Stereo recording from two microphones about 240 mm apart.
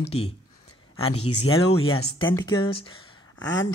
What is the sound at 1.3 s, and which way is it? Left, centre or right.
Speech, left.